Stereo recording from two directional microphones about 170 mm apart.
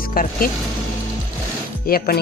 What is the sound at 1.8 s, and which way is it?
Speech, 60° left (ahead or behind).